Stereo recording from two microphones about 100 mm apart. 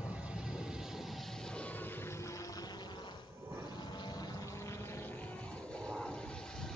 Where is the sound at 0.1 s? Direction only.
10° right (ahead or behind).